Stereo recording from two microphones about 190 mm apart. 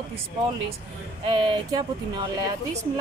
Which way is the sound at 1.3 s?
25° right (ahead or behind).